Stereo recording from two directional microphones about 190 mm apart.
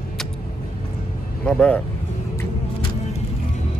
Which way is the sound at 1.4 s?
5° left (ahead or behind).